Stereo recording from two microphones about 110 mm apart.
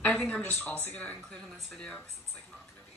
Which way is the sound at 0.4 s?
15° left (ahead or behind).